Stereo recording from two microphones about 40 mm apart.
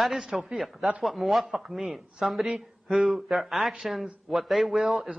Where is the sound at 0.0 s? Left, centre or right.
Centre.